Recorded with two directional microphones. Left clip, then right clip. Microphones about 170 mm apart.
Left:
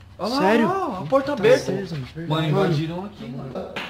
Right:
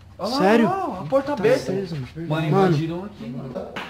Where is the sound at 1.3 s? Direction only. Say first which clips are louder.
Left 3 dB; 50° left (ahead or behind).